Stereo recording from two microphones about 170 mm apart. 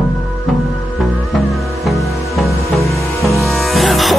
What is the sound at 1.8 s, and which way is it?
Music, centre (ahead or behind).